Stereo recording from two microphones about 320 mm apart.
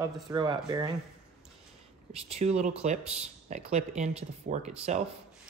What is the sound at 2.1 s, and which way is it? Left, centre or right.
Speech, centre.